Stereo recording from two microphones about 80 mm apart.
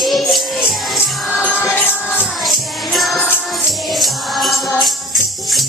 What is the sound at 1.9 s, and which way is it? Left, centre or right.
Music, left.